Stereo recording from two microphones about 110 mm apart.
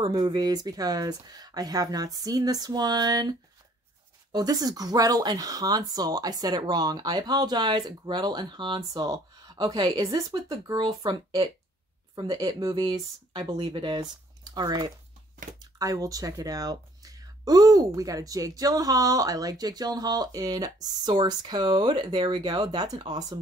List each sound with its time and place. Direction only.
0.0 s speech: 40° right (ahead or behind)
9.0 s speech: 35° right (ahead or behind)